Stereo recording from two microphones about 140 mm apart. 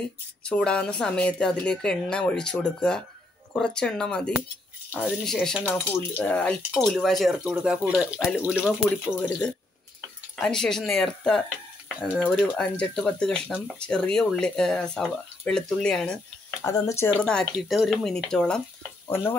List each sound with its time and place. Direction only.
0.4 s a woman's voice: 5° left (ahead or behind)
5.7 s a woman's voice: 15° left (ahead or behind)
8.4 s speech: 10° right (ahead or behind)
8.8 s a woman's voice: 15° left (ahead or behind)
16.6 s speech: 25° left (ahead or behind)
17.2 s speech: 5° left (ahead or behind)